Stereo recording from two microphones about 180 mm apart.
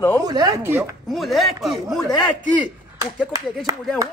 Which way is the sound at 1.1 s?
Centre (ahead or behind).